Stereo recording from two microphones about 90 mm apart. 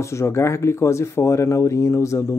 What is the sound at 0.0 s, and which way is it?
Speech, 30° left (ahead or behind).